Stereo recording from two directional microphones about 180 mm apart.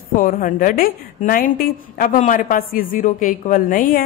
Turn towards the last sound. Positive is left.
turn(degrees=50)  # may be behind; listen again after turning